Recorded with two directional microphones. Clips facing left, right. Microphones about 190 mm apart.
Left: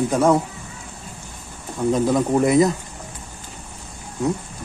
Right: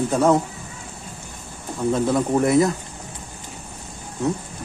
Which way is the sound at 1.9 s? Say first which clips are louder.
Left 1 dB; 20° left (ahead or behind).